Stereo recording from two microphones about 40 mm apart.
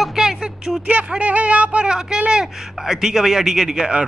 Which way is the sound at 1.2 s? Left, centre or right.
Right.